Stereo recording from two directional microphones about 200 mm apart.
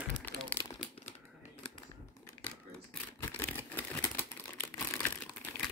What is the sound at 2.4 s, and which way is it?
Typewriter, 10° left (ahead or behind).